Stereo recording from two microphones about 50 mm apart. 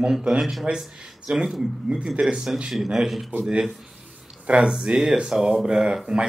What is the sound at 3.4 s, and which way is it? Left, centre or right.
Speech, centre.